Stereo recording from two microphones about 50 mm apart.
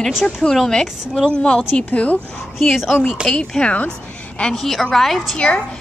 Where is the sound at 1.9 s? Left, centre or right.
Left.